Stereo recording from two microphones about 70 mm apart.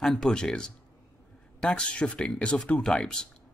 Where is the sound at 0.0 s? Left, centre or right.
Centre.